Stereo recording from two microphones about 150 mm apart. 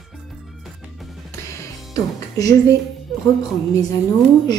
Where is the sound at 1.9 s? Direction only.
25° left (ahead or behind).